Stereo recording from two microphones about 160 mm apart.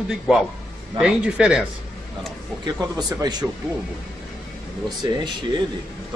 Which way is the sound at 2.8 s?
25° right (ahead or behind).